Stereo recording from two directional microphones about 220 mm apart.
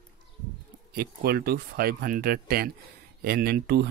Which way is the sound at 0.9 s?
45° right (ahead or behind).